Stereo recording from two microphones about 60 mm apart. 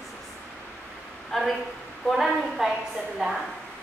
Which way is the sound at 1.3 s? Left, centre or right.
Centre.